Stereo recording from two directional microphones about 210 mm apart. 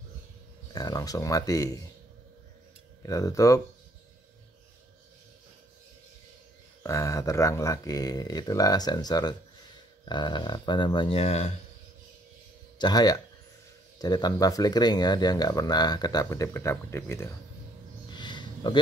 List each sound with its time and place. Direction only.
0.7 s speech: 15° left (ahead or behind)
3.0 s speech: 15° left (ahead or behind)
6.8 s speech: 15° left (ahead or behind); by 11.5 s 30° left (ahead or behind)
12.7 s speech: 20° left (ahead or behind)
18.1 s a sound: 20° left (ahead or behind)